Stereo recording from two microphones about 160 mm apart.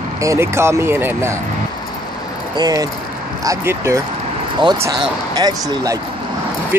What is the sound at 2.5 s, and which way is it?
Speech, 25° right (ahead or behind).